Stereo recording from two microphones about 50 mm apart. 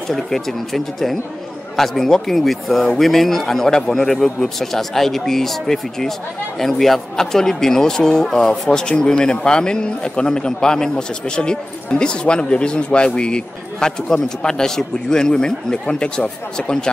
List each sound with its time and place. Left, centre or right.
0.1 s speech: centre